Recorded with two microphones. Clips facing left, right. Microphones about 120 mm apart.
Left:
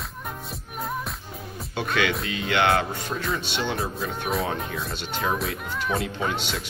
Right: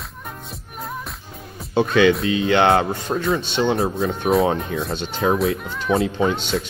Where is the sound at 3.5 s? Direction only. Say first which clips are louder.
Right 8 dB; 30° right (ahead or behind).